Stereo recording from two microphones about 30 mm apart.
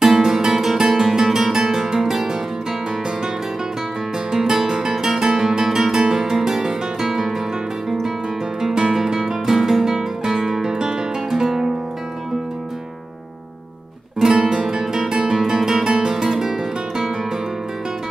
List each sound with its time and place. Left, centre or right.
0.0 s guitar: centre
4.3 s music: centre
4.9 s guitar: centre
8.5 s music: centre
11.2 s music: centre
14.3 s guitar: right
15.4 s music: centre